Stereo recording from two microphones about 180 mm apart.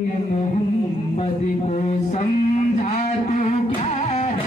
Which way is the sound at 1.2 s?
35° left (ahead or behind).